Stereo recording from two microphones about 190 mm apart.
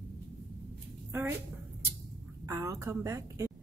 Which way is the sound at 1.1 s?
10° right (ahead or behind).